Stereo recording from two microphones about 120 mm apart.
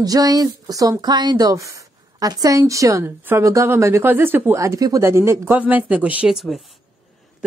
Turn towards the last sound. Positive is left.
turn(degrees=0)  # may be behind; listen again after turning